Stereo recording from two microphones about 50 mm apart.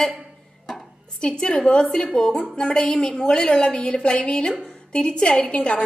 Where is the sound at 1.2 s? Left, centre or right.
Centre.